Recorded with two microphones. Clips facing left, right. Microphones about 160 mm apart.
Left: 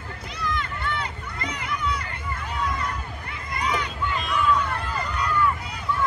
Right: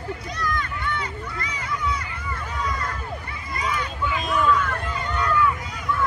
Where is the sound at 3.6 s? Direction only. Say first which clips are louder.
Even; centre (ahead or behind).